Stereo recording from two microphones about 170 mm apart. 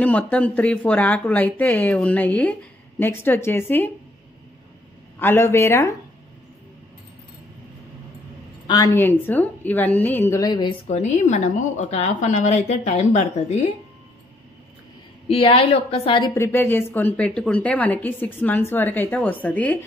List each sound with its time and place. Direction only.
0.0 s a woman's voice: 10° left (ahead or behind)
5.2 s a woman's voice: 15° left (ahead or behind)
8.6 s a woman's voice: 20° left (ahead or behind)
10.9 s a woman's voice: 40° left (ahead or behind)
15.2 s a woman's voice: 30° left (ahead or behind)
16.3 s a woman's voice: 15° left (ahead or behind)